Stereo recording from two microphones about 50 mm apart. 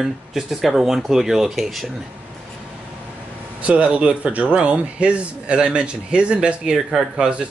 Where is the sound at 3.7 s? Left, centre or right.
Right.